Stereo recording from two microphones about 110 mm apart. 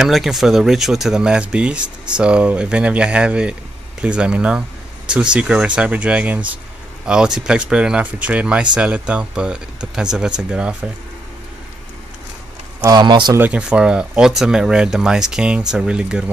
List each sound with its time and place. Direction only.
0.0 s speech: centre (ahead or behind)
12.8 s speech: 40° right (ahead or behind)
13.5 s speech: 10° right (ahead or behind)